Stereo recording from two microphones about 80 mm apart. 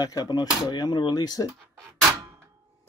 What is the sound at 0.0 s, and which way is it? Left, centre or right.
Speech, left.